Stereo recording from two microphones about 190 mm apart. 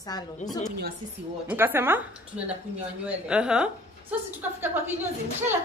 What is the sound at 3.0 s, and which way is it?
A woman's voice, 5° right (ahead or behind).